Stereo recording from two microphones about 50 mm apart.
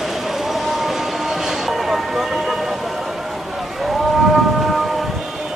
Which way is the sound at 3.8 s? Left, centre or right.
Centre.